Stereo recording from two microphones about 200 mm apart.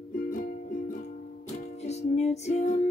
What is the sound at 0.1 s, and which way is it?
Music, 45° left (ahead or behind).